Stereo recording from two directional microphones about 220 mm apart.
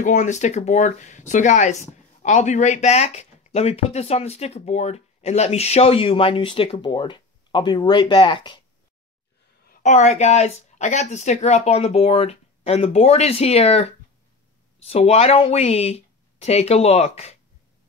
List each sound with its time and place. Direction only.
0.0 s speech: 35° left (ahead or behind)
9.7 s speech: 35° left (ahead or behind)